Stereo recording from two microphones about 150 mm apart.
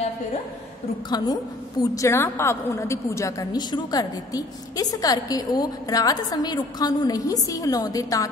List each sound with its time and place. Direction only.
1.1 s a woman's voice: 25° left (ahead or behind)